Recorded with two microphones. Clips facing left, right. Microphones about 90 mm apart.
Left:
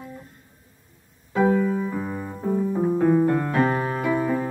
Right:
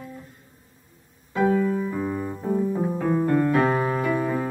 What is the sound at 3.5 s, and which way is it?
Piano, centre (ahead or behind).